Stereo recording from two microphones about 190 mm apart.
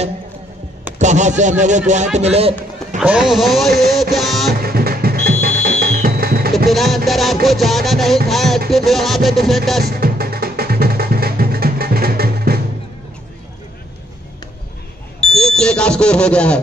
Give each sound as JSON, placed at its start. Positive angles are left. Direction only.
{"t": 0.9, "sound": "a man's voice", "side_deg": -40}
{"t": 3.0, "sound": "music", "side_deg": -5}
{"t": 4.5, "sound": "music", "side_deg": -55}
{"t": 6.7, "sound": "music", "side_deg": 0}
{"t": 9.8, "sound": "music", "side_deg": -55}
{"t": 15.1, "sound": "speech", "side_deg": 5}